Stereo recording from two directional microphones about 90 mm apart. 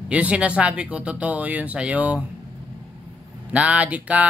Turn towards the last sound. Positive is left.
turn(degrees=-15)  # may be behind; listen again after turning